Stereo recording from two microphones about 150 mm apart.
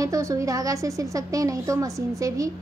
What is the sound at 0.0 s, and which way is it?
A woman's voice, 20° right (ahead or behind).